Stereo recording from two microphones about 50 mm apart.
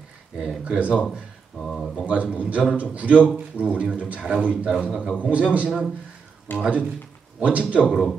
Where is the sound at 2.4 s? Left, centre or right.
Right.